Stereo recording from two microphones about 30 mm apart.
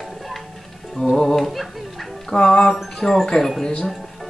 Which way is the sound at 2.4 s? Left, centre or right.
Left.